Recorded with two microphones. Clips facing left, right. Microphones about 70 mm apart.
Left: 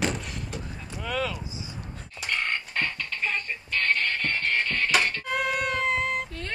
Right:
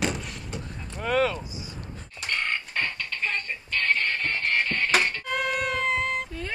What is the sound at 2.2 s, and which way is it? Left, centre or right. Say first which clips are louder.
Music: even; centre.